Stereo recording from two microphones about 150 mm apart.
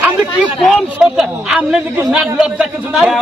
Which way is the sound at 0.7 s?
5° right (ahead or behind).